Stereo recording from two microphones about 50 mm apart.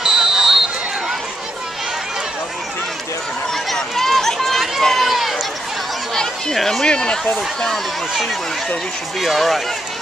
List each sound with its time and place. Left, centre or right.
0.0 s basketball bounce: centre
3.7 s run: centre
6.1 s chatter: centre
6.9 s speech: centre
9.2 s speech: centre